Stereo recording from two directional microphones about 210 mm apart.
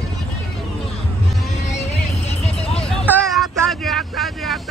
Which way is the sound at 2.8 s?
5° left (ahead or behind).